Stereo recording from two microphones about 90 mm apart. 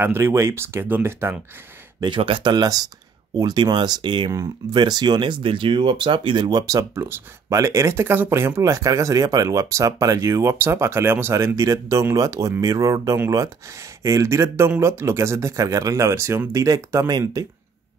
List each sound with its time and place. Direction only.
0.0 s speech: 25° right (ahead or behind)
2.0 s speech: 65° right (ahead or behind)
2.5 s speech: 45° right (ahead or behind); by 6.6 s 65° right (ahead or behind)
6.6 s speech: 40° right (ahead or behind)